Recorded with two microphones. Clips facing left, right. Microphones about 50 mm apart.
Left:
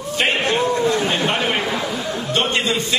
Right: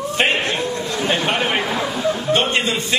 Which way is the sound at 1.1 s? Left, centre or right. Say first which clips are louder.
Even; centre.